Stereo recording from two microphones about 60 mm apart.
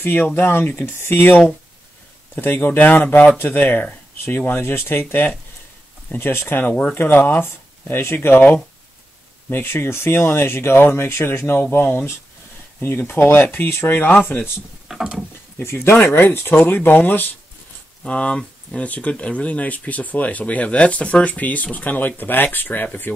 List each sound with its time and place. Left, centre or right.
0.0 s speech: left
9.5 s speech: left
14.0 s speech: left
14.9 s a sound: centre
15.6 s speech: left
18.0 s speech: centre; by 23.2 s left